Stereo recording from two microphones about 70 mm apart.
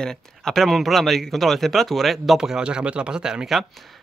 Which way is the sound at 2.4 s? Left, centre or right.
Centre.